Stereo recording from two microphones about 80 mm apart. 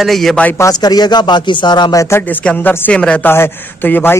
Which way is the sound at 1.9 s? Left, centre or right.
Left.